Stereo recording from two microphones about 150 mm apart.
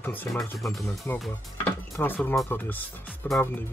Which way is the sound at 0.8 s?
20° left (ahead or behind).